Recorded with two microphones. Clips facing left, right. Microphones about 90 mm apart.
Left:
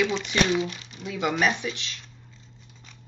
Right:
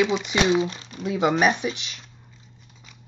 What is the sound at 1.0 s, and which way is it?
Speech, 30° right (ahead or behind).